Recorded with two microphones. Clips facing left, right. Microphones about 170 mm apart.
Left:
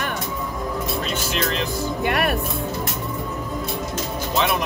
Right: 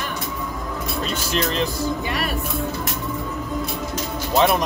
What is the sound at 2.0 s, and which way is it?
Speech, 60° left (ahead or behind).